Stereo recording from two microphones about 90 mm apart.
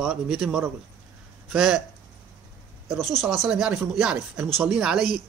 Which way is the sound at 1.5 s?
5° right (ahead or behind).